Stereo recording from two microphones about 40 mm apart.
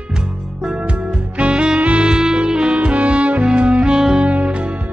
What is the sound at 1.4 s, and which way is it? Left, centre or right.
Music, right.